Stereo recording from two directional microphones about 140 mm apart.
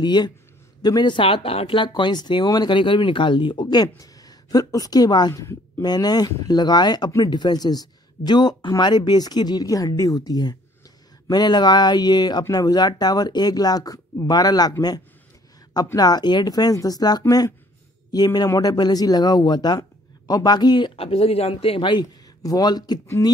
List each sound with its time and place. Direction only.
0.0 s speech: 30° left (ahead or behind)
23.0 s speech: 20° left (ahead or behind)